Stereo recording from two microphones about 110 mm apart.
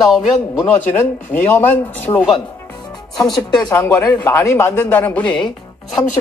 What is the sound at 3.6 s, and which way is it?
Speech, 20° left (ahead or behind).